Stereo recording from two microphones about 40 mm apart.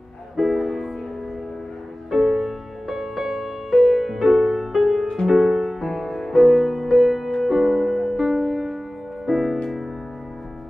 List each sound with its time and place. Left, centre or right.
0.4 s music: centre
2.0 s music: centre